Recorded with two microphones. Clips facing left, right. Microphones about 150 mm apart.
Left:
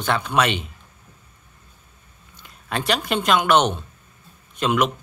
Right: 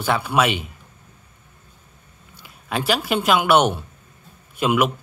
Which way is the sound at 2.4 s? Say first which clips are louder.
Right 2 dB; 5° right (ahead or behind).